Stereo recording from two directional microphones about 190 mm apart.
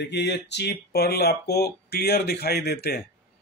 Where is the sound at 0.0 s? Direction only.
65° left (ahead or behind).